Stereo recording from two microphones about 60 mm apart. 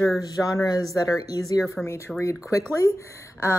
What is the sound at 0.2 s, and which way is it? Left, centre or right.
Speech, left.